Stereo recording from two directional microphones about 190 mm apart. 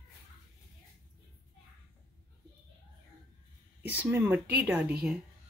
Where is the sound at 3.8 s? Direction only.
10° right (ahead or behind).